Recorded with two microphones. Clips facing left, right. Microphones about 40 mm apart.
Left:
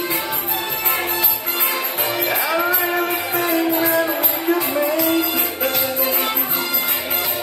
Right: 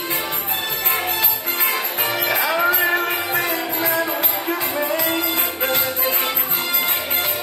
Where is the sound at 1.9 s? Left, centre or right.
Right.